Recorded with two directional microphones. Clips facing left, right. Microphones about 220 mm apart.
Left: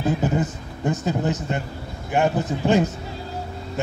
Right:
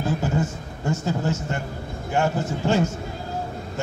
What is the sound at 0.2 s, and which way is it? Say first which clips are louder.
A man's voice: left 2 dB; 20° left (ahead or behind).